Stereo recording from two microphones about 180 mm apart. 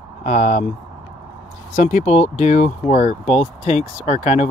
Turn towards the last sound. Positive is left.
turn(degrees=40)  # may be behind; listen again after turning